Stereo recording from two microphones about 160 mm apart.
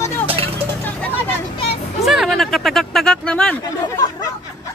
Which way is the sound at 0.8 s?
10° left (ahead or behind).